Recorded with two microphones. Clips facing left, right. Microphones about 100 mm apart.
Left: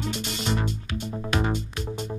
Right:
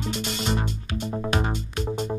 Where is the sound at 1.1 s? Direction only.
25° right (ahead or behind).